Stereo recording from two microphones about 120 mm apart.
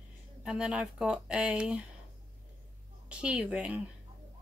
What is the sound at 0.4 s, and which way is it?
Speech, 5° right (ahead or behind).